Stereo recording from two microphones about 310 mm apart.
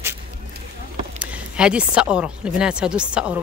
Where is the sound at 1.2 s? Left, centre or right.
Centre.